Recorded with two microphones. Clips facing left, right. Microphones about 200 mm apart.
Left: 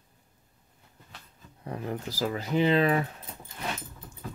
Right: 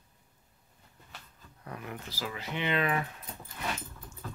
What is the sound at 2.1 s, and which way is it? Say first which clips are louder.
Speech: left 10 dB; 40° left (ahead or behind).